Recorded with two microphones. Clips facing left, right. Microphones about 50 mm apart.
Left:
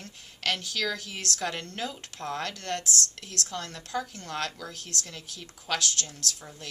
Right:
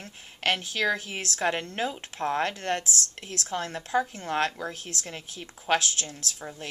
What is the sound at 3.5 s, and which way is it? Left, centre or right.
A woman's voice, right.